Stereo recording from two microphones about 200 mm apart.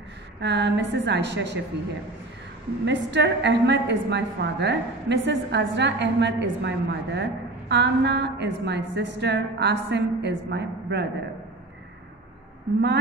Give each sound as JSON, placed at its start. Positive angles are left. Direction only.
{"t": 0.4, "sound": "a woman's voice", "side_deg": -60}
{"t": 2.8, "sound": "a woman's voice", "side_deg": -60}